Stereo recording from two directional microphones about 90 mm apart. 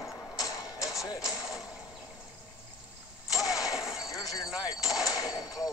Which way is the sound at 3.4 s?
40° left (ahead or behind).